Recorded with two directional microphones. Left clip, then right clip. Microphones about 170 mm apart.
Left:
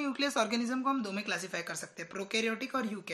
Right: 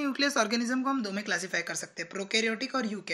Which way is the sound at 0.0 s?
20° right (ahead or behind).